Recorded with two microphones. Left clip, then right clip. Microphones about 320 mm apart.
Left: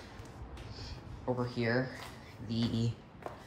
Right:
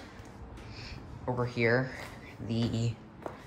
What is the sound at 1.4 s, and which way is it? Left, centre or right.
Speech, centre.